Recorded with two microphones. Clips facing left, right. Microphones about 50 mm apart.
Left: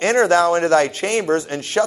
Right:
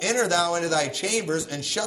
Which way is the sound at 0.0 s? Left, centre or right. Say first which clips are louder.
Left 8 dB; left.